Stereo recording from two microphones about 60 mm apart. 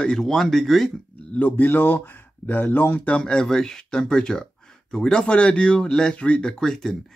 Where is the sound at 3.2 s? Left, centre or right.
Centre.